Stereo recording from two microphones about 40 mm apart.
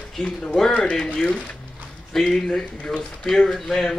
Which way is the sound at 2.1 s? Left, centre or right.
Centre.